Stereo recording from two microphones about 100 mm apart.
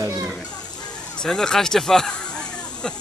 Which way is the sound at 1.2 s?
5° left (ahead or behind).